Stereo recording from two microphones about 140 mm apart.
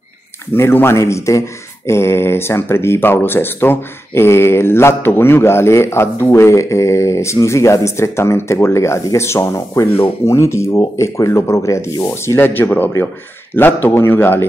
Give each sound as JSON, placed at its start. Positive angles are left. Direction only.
{"t": 0.6, "sound": "a man's voice", "side_deg": 15}